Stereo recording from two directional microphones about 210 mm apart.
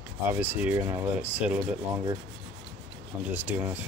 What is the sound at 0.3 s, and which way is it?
Speech, 10° right (ahead or behind).